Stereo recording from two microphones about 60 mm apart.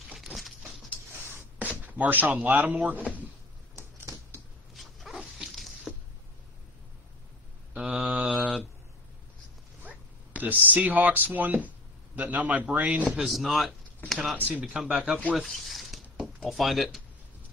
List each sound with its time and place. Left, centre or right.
0.1 s patter: centre
1.6 s speech: right
3.7 s a sound: right
4.7 s dog: centre
7.7 s mantra: centre
9.8 s a man's voice: right
13.2 s speech: centre
14.3 s a man's voice: right
14.7 s speech: centre
15.4 s a sound: centre
16.4 s speech: centre